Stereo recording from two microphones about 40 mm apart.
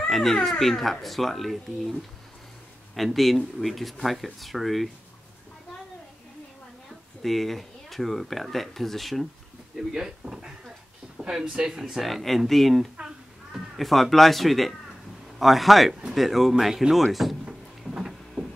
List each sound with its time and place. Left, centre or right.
0.1 s speech: centre
7.2 s speech: centre
9.8 s speech: centre
10.2 s a sound: centre
11.1 s speech: right
12.0 s speech: centre
12.9 s babbling: right
13.7 s speech: centre
17.8 s a sound: centre